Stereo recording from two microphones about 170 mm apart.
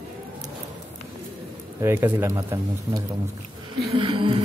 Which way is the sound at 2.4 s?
20° right (ahead or behind).